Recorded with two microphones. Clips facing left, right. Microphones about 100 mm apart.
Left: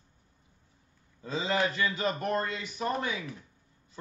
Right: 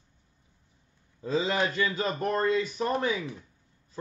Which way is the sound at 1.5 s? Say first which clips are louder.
Right 1 dB; 20° right (ahead or behind).